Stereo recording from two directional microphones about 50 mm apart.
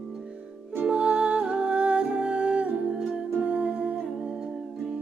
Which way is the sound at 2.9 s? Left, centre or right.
Centre.